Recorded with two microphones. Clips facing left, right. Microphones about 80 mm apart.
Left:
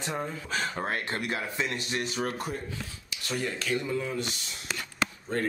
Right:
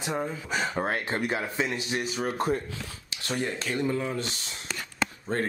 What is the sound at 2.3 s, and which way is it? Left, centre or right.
Speech, right.